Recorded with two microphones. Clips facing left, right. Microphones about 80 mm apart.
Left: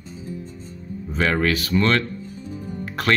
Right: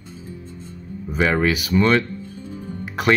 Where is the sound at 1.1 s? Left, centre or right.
Centre.